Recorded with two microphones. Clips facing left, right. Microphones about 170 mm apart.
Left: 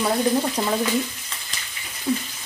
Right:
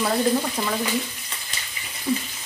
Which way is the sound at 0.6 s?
25° left (ahead or behind).